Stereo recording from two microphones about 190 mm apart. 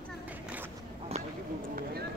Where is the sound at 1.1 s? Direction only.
35° right (ahead or behind).